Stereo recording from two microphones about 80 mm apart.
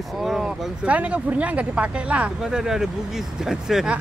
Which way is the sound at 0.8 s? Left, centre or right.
Centre.